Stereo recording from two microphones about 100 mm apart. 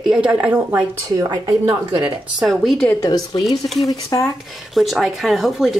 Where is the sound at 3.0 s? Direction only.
40° left (ahead or behind).